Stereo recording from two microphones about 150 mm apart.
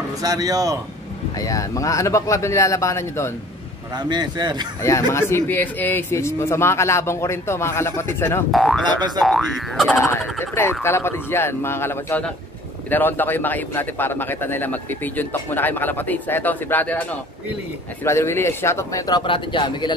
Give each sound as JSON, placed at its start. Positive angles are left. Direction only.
{"t": 0.2, "sound": "speech", "side_deg": -25}
{"t": 1.3, "sound": "a man's voice", "side_deg": 20}
{"t": 3.9, "sound": "speech", "side_deg": -30}
{"t": 4.8, "sound": "speech", "side_deg": 20}
{"t": 8.5, "sound": "boing", "side_deg": 0}
{"t": 8.8, "sound": "speech", "side_deg": -30}
{"t": 9.2, "sound": "boing", "side_deg": 0}
{"t": 10.4, "sound": "a man's voice", "side_deg": 15}